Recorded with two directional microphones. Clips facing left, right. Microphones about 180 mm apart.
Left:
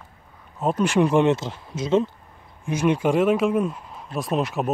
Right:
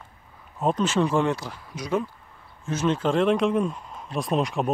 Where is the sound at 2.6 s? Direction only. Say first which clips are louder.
Left 3 dB; 15° left (ahead or behind).